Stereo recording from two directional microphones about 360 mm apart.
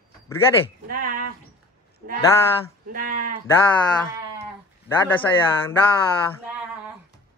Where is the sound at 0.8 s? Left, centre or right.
Right.